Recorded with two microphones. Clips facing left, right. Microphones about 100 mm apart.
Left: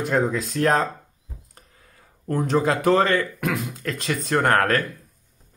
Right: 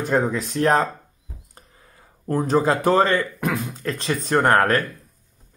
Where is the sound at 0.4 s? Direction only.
25° right (ahead or behind).